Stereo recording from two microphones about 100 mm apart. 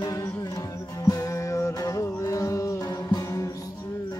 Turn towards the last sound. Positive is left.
turn(degrees=35)  # may be behind; listen again after turning